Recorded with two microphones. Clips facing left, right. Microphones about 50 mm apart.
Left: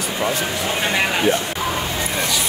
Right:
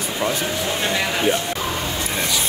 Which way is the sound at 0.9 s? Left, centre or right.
Left.